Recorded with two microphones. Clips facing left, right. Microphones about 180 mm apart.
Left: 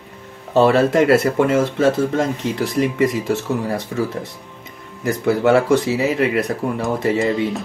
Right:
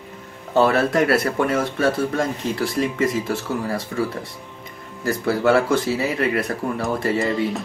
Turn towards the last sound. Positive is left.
turn(degrees=0)  # may be behind; listen again after turning